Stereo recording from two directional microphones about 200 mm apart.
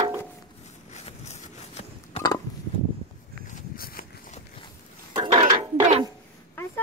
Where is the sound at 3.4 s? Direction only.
45° left (ahead or behind).